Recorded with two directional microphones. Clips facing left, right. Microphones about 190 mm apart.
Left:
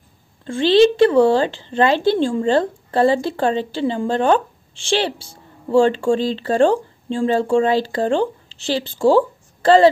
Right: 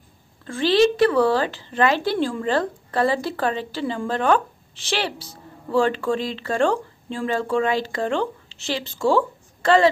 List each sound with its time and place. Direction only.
0.5 s speech: 25° left (ahead or behind)